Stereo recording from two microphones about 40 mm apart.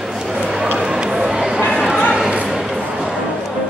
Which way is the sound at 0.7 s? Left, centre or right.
Centre.